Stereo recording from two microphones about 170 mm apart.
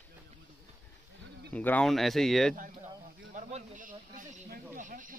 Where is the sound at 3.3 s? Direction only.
50° right (ahead or behind).